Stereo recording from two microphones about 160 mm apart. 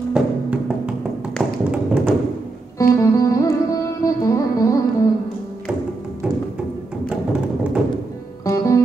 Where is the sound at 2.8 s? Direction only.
20° left (ahead or behind).